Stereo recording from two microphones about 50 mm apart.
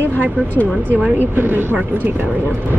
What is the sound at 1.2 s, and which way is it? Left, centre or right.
Speech, right.